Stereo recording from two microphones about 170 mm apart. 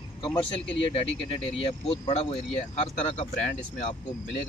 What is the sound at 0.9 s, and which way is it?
Speech, 30° left (ahead or behind).